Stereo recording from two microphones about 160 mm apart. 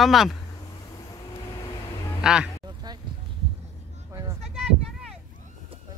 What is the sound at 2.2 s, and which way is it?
Speech, 5° right (ahead or behind).